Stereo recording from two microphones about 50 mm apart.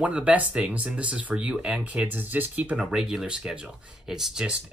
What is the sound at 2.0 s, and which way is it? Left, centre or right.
Speech, right.